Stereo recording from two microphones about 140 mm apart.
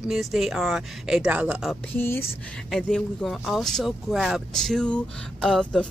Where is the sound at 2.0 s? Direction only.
15° left (ahead or behind).